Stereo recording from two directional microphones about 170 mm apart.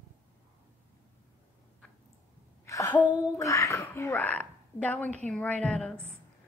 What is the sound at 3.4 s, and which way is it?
Speech, 15° left (ahead or behind).